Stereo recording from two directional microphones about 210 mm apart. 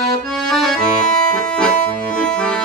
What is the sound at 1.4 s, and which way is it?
Music, 5° left (ahead or behind).